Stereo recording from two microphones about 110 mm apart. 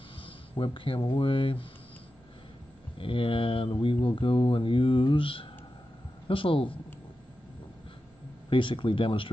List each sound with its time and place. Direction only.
0.2 s speech: 55° left (ahead or behind)
3.0 s speech: 55° left (ahead or behind)
8.5 s speech: 50° left (ahead or behind)